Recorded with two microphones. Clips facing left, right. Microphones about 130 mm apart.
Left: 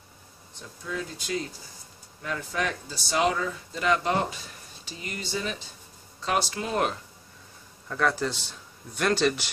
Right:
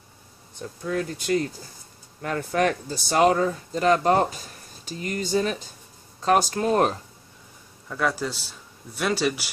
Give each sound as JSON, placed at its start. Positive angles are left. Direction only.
{"t": 0.6, "sound": "speech", "side_deg": -55}
{"t": 7.9, "sound": "speech", "side_deg": -5}